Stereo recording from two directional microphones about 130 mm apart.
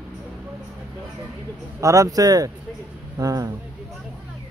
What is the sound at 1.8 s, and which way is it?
Speech, 25° right (ahead or behind).